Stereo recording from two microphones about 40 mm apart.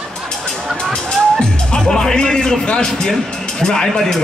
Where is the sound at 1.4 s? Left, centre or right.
Centre.